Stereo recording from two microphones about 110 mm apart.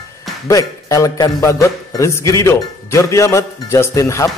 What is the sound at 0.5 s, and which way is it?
Speech, 30° left (ahead or behind).